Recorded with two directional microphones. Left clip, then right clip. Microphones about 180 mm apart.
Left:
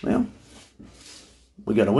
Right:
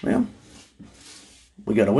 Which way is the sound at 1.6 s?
5° right (ahead or behind).